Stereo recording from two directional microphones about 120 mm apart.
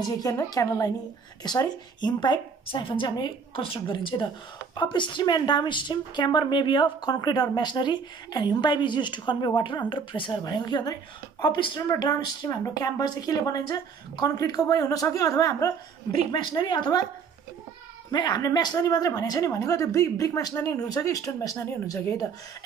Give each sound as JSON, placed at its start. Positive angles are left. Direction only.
{"t": 0.0, "sound": "a woman's voice", "side_deg": 30}
{"t": 11.8, "sound": "a woman's voice", "side_deg": 30}
{"t": 18.1, "sound": "speech", "side_deg": 35}